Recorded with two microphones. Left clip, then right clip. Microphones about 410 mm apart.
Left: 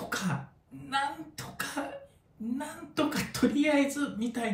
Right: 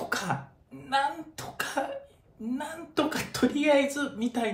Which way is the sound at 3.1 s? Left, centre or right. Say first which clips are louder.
Right 2 dB; centre.